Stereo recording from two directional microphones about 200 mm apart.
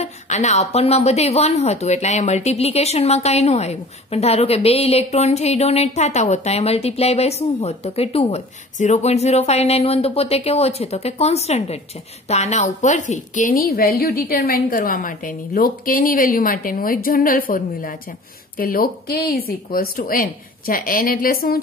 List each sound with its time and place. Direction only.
0.0 s a woman's voice: 35° left (ahead or behind)